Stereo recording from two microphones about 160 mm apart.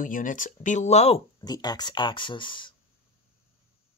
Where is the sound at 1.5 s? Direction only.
25° left (ahead or behind).